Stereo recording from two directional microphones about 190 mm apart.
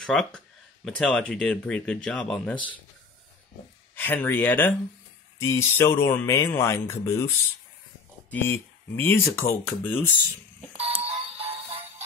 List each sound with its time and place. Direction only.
0.0 s speech: centre (ahead or behind)
3.9 s speech: 10° left (ahead or behind)
8.3 s speech: 10° left (ahead or behind)
10.7 s music: 30° right (ahead or behind)